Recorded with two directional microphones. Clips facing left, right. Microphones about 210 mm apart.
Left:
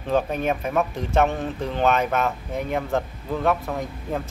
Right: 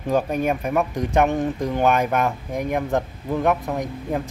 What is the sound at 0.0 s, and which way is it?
Speech, 10° right (ahead or behind).